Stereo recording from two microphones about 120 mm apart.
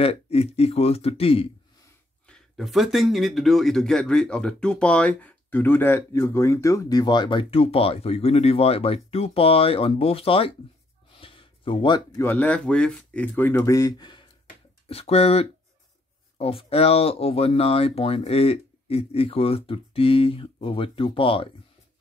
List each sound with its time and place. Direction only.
0.0 s speech: 55° left (ahead or behind)
2.2 s speech: 5° left (ahead or behind); by 10.5 s 50° left (ahead or behind)
11.1 s a sound: 45° left (ahead or behind)
12.2 s speech: 15° left (ahead or behind); by 14.2 s 35° left (ahead or behind)
14.9 s speech: 55° left (ahead or behind)